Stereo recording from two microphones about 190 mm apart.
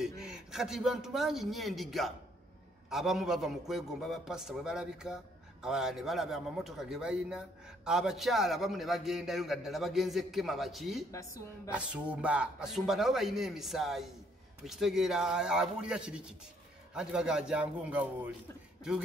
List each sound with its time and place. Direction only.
0.2 s a man's voice: 5° right (ahead or behind)
11.1 s a woman's voice: 15° left (ahead or behind)
11.7 s a man's voice: 5° right (ahead or behind)